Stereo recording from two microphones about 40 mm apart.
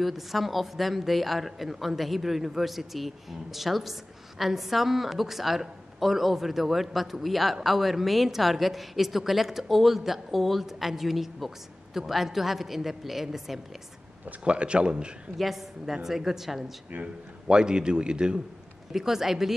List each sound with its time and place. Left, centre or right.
0.0 s a woman's voice: centre
14.4 s a man's voice: right
15.3 s a woman's voice: centre
17.0 s a man's voice: right
18.9 s speech: centre